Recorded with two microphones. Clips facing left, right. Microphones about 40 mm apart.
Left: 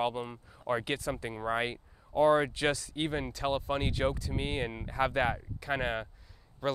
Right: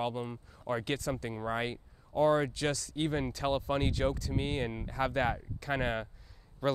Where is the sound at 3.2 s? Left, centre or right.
Centre.